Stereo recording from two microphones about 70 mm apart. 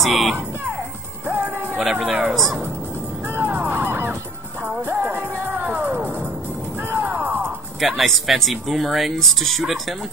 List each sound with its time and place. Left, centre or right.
0.0 s music: centre
1.2 s music: right
1.8 s speech: centre
3.3 s music: right
7.8 s speech: centre